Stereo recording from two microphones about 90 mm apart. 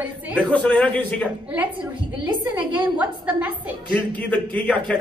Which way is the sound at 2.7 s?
15° right (ahead or behind).